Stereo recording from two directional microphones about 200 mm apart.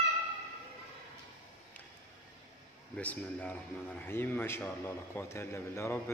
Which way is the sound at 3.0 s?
5° left (ahead or behind).